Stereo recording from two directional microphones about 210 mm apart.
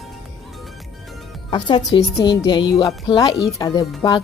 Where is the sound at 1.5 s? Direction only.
20° left (ahead or behind).